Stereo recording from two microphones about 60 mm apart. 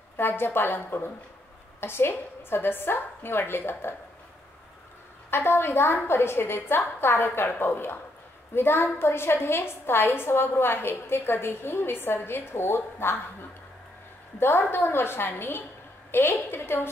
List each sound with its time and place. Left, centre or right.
0.2 s a woman's voice: left
5.3 s a woman's voice: left
14.7 s a woman's voice: left